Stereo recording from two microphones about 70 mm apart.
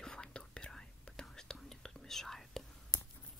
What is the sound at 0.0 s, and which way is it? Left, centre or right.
Whispering, centre.